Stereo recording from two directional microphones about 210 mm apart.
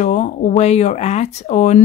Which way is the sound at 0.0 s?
35° left (ahead or behind).